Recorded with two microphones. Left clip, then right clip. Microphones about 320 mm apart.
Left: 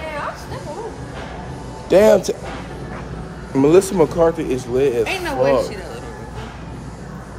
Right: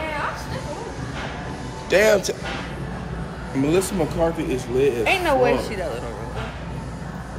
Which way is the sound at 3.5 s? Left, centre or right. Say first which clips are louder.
Left 8 dB; centre.